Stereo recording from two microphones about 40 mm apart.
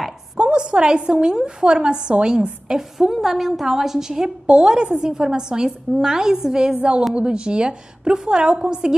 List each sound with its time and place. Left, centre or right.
0.4 s a woman's voice: right
2.7 s a woman's voice: centre